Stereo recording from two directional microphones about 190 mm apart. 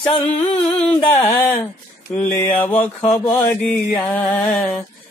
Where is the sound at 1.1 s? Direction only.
10° left (ahead or behind).